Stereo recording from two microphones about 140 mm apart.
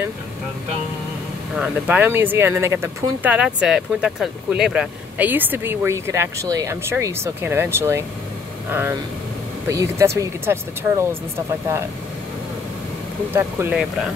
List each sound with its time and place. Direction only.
1.6 s speech: 10° right (ahead or behind)
9.7 s speech: 20° right (ahead or behind)
13.3 s speech: 15° right (ahead or behind)